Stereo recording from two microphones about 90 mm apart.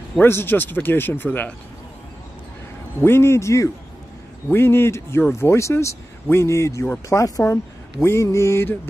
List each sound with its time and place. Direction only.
0.2 s speech: 25° left (ahead or behind)
3.0 s a man's voice: 25° left (ahead or behind)